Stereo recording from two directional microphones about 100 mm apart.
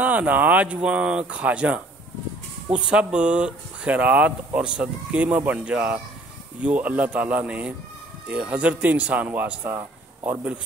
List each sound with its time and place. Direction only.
0.0 s speech: 15° right (ahead or behind)
2.9 s speech: 10° right (ahead or behind)